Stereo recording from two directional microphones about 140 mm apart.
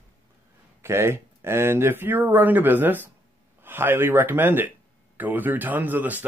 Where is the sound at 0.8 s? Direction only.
20° right (ahead or behind).